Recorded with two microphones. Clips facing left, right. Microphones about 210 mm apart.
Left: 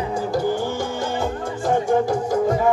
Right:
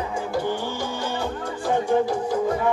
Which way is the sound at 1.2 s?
45° left (ahead or behind).